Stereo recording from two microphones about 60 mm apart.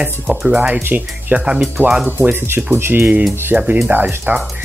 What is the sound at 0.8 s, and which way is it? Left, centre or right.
Speech, right.